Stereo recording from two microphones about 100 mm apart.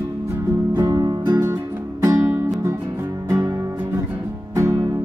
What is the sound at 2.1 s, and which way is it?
Music, 25° right (ahead or behind).